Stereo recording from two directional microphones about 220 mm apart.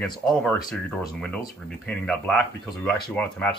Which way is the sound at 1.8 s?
5° left (ahead or behind).